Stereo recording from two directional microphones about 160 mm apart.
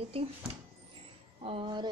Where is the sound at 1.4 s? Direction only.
35° right (ahead or behind).